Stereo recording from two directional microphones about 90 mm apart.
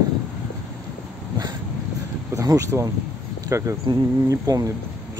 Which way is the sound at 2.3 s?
40° right (ahead or behind).